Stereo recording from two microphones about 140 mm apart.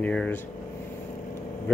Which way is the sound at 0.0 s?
10° left (ahead or behind).